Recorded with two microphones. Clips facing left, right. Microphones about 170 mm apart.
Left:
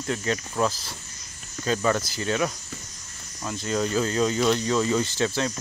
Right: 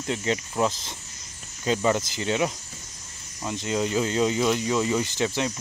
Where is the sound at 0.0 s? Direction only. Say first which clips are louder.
Even; 20° right (ahead or behind).